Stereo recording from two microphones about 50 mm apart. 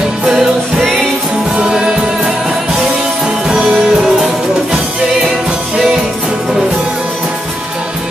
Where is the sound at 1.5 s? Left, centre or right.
Centre.